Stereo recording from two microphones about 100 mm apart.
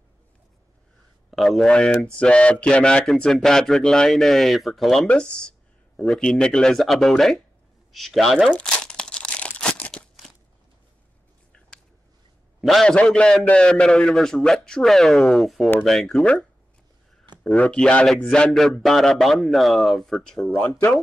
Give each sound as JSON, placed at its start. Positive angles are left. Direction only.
{"t": 1.3, "sound": "a man's voice", "side_deg": 0}
{"t": 8.5, "sound": "crumpling", "side_deg": 10}
{"t": 12.6, "sound": "a man's voice", "side_deg": 5}